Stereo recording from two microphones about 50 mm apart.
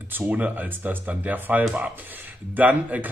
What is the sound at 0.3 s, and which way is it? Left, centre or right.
Speech, right.